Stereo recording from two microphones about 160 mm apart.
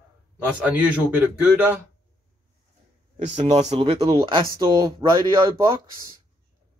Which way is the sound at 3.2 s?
45° right (ahead or behind).